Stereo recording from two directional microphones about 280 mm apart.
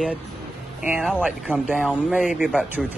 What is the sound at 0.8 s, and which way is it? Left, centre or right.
Speech, centre.